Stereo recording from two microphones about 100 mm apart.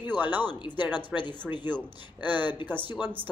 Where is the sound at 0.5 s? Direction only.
50° left (ahead or behind).